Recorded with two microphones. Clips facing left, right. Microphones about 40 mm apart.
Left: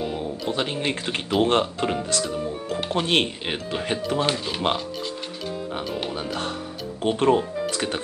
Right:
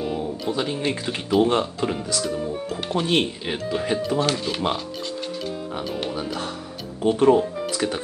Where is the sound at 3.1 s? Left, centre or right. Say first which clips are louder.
Right 1 dB; left.